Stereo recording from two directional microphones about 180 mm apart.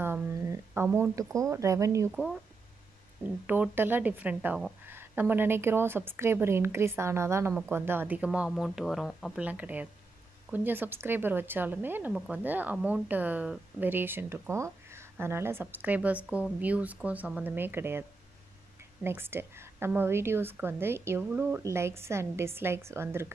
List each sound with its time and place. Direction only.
0.0 s speech: 15° right (ahead or behind)
3.4 s a woman's voice: 10° right (ahead or behind)
19.0 s a woman's voice: 15° right (ahead or behind)